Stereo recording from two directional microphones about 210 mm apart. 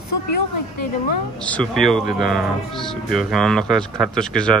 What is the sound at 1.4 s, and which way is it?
Speech, 5° left (ahead or behind).